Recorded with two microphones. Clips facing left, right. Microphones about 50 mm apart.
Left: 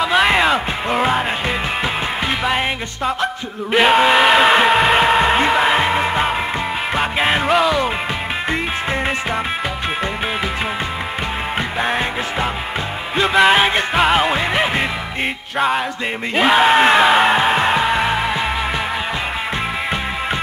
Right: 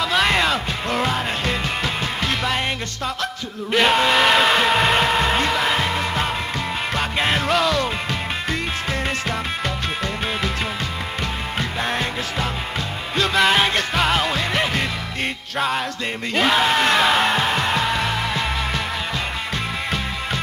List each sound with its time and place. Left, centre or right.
0.0 s music: centre
3.7 s speech: centre
7.0 s music: centre
11.8 s music: centre